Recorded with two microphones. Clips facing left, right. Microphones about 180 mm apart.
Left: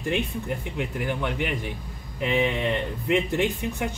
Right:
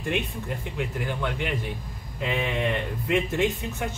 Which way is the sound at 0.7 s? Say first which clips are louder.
Left 1 dB; 15° left (ahead or behind).